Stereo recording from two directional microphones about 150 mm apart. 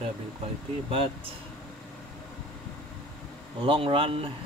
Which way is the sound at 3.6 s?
35° right (ahead or behind).